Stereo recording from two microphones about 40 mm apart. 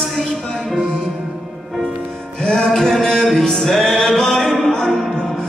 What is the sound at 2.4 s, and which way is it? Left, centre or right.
Music, centre.